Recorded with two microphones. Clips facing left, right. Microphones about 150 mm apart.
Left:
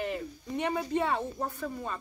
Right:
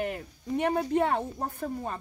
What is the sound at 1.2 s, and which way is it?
Speech, 30° right (ahead or behind).